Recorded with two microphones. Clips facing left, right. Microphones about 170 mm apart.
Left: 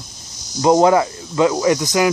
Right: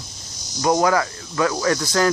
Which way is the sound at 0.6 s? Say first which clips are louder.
Left 5 dB; 25° left (ahead or behind).